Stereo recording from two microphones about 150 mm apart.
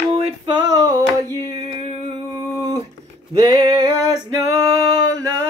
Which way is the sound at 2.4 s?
25° right (ahead or behind).